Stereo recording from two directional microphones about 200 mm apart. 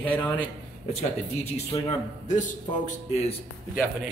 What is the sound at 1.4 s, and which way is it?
A man's voice, 30° left (ahead or behind).